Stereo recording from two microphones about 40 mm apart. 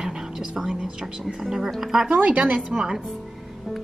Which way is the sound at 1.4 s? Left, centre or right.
Centre.